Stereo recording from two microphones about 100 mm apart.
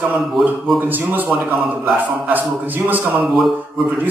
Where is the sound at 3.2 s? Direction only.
Centre (ahead or behind).